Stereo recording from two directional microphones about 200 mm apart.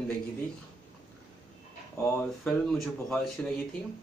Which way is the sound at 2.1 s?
5° left (ahead or behind).